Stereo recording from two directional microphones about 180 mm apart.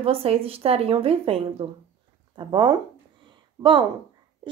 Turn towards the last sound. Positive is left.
turn(degrees=-25)  # may be behind; listen again after turning